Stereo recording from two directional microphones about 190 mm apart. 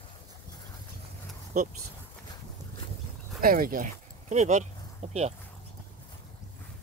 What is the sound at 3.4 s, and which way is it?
Speech, 50° right (ahead or behind).